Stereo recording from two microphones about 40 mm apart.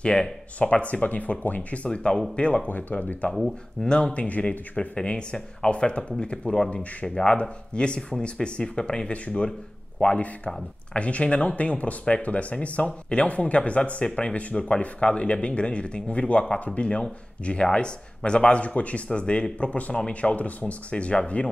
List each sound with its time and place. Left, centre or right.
0.0 s speech: left
0.6 s speech: left
1.9 s speech: left
2.7 s speech: left
3.8 s speech: left
4.1 s speech: left